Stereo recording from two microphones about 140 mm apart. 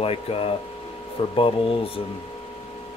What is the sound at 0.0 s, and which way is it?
Speech, 45° left (ahead or behind).